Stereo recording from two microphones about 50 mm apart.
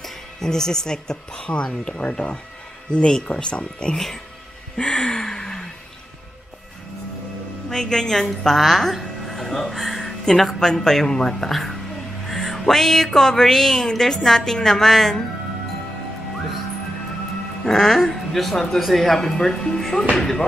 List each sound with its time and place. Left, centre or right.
0.0 s speech: centre
2.0 s speech: left
2.9 s speech: centre
4.7 s a sound: centre
7.7 s a woman's voice: centre
17.6 s speech: centre